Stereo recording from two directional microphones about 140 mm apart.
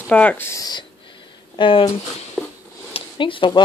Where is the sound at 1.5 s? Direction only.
35° left (ahead or behind).